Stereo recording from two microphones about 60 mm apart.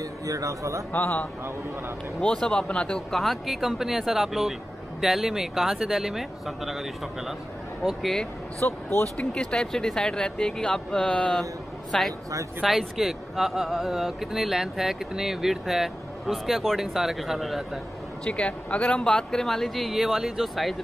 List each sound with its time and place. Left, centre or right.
0.0 s a man's voice: right
0.9 s a man's voice: left
2.3 s speech: centre
3.1 s speech: centre
8.6 s a man's voice: left
9.1 s speech: centre
18.2 s speech: centre